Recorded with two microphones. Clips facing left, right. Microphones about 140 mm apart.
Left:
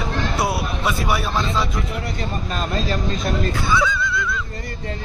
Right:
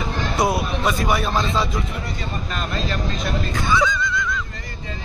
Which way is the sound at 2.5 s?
35° left (ahead or behind).